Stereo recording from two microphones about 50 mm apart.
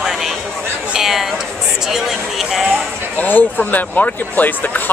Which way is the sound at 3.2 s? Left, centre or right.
Left.